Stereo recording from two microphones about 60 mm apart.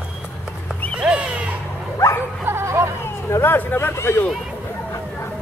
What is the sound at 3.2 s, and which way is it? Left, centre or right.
Speech, left.